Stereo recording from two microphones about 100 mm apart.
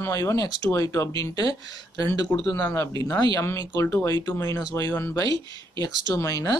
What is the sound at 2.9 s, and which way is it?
Speech, 40° left (ahead or behind).